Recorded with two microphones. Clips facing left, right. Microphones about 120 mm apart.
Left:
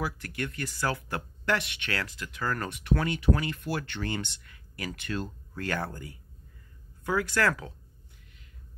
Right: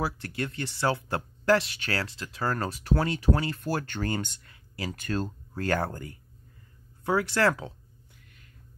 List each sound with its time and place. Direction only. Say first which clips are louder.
0.0 s speech: right 2 dB; 30° right (ahead or behind)
4.7 s speech: right 3 dB; 30° right (ahead or behind); by 6.1 s 45° right (ahead or behind)
7.1 s speech: right 2 dB; 30° right (ahead or behind)